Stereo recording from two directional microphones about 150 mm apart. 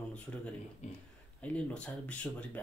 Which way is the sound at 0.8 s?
45° left (ahead or behind).